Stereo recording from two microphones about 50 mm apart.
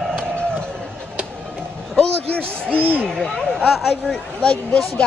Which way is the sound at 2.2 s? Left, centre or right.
Left.